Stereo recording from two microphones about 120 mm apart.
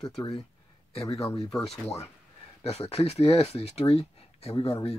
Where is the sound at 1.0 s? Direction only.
25° left (ahead or behind).